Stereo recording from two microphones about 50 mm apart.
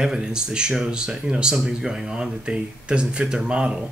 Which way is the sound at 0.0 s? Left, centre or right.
Centre.